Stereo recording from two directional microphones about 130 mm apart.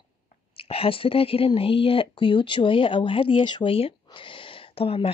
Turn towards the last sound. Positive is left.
turn(degrees=45)  # may be behind; listen again after turning